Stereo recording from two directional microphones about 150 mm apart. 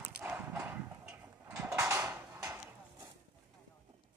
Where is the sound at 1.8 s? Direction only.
15° right (ahead or behind).